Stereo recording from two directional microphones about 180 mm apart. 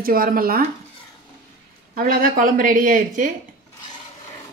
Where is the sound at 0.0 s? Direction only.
55° right (ahead or behind).